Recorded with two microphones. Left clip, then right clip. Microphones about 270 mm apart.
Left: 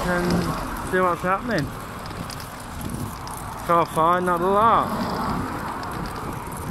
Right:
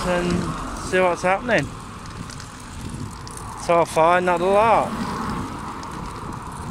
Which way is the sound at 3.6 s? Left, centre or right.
Right.